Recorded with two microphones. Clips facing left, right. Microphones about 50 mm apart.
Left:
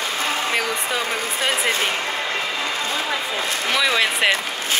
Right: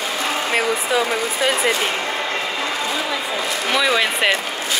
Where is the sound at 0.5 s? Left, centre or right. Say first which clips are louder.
Right 6 dB; centre.